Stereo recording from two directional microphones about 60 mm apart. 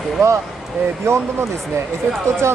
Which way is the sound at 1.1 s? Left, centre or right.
Right.